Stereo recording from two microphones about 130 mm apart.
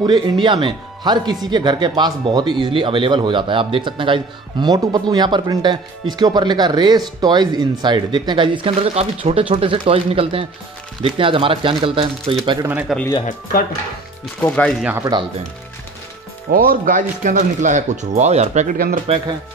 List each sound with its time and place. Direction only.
0.0 s a man's voice: 35° right (ahead or behind)
12.9 s speech: centre (ahead or behind)
14.4 s speech: 10° left (ahead or behind)
14.8 s speech: 10° right (ahead or behind)
16.5 s speech: 90° right
19.1 s speech: 50° right (ahead or behind)